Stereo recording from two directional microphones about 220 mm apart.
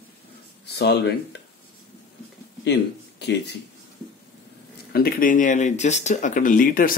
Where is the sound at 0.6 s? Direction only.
50° left (ahead or behind).